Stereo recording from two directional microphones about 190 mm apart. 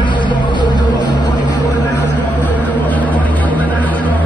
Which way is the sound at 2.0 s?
10° right (ahead or behind).